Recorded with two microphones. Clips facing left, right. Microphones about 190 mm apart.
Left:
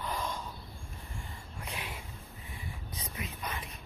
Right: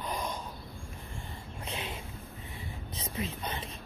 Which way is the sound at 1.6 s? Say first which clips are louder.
Right 3 dB; 25° right (ahead or behind).